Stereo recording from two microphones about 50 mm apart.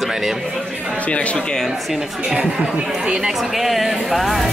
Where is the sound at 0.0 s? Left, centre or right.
Centre.